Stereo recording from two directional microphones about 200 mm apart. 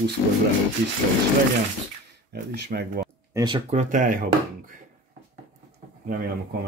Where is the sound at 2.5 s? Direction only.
55° right (ahead or behind).